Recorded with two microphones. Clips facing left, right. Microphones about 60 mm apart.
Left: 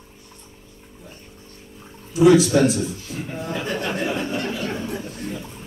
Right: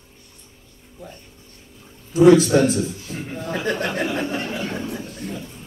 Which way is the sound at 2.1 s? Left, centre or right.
Right.